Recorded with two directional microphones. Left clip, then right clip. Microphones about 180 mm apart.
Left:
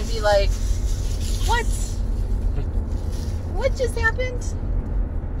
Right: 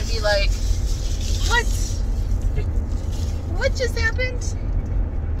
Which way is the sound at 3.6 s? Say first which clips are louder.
Even; 20° left (ahead or behind).